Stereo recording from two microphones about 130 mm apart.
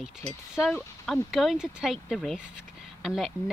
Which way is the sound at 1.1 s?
Centre (ahead or behind).